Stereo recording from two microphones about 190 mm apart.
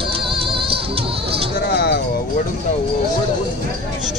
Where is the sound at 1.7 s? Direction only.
55° left (ahead or behind).